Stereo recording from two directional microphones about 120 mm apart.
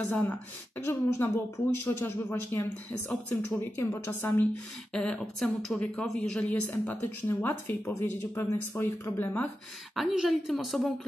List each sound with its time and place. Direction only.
0.1 s a woman's voice: 10° left (ahead or behind)
9.9 s a woman's voice: centre (ahead or behind)